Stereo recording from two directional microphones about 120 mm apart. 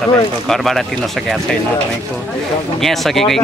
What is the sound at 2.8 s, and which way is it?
Speech, centre (ahead or behind).